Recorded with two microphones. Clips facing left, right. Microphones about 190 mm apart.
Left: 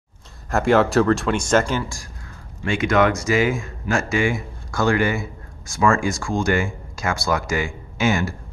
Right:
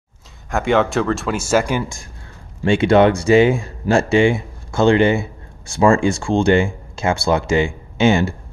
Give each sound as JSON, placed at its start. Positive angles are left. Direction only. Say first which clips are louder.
{"t": 0.5, "sound": "speech", "louder": "even", "side_deg": 0}
{"t": 2.6, "sound": "speech", "louder": "right 6 dB", "side_deg": -30}